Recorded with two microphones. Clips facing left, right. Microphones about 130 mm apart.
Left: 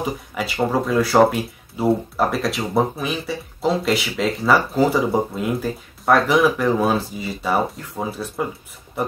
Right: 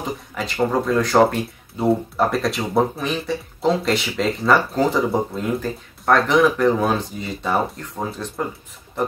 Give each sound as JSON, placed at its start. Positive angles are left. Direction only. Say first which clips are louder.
{"t": 0.3, "sound": "speech", "louder": "right 1 dB", "side_deg": 5}